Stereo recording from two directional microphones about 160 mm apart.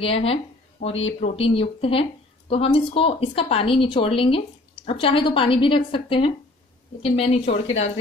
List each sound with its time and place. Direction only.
0.0 s a woman's voice: 35° left (ahead or behind)